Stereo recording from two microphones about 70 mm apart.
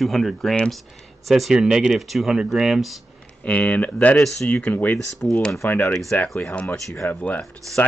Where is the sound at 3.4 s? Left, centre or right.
Centre.